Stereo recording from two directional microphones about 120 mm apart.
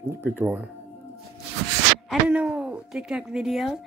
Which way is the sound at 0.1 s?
15° right (ahead or behind).